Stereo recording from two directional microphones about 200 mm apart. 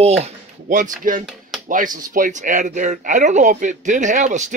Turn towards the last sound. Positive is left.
turn(degrees=-40)  # may be behind; listen again after turning